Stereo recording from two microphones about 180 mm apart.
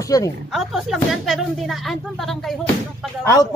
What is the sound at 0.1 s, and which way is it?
Speech, 20° left (ahead or behind).